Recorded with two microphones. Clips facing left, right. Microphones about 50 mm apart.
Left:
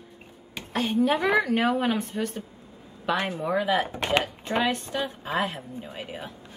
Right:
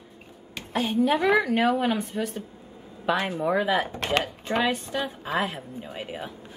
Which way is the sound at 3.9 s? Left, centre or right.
Centre.